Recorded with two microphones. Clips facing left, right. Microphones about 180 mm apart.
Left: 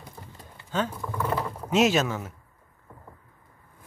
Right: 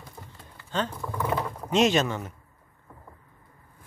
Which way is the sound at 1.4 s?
5° left (ahead or behind).